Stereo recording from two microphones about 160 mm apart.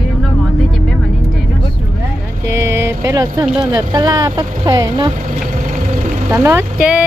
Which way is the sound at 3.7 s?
25° right (ahead or behind).